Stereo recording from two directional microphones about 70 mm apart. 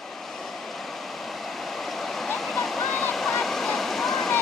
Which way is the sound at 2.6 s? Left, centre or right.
Centre.